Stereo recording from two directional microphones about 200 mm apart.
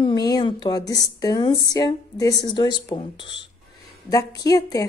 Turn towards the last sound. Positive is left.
turn(degrees=15)  # may be behind; listen again after turning